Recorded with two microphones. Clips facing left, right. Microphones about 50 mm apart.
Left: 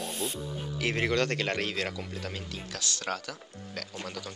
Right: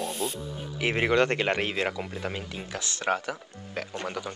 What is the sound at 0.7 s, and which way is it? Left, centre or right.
Speech, right.